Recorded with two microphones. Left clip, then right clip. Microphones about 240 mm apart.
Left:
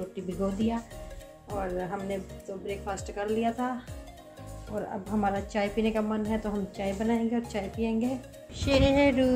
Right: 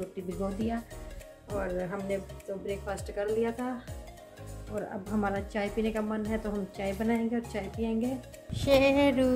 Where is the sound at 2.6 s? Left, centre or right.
Centre.